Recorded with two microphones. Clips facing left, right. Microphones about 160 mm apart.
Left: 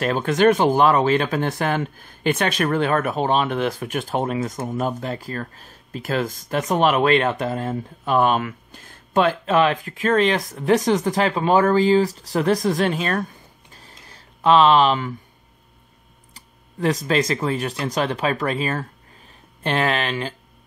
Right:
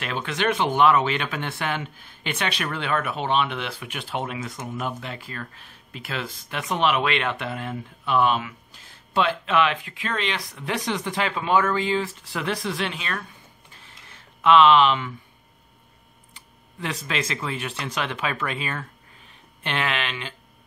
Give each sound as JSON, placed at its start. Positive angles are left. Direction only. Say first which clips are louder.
{"t": 0.0, "sound": "speech", "louder": "left 9 dB", "side_deg": 40}
{"t": 13.7, "sound": "a sound", "louder": "left 5 dB", "side_deg": 40}
{"t": 16.3, "sound": "speech", "louder": "left 9 dB", "side_deg": 40}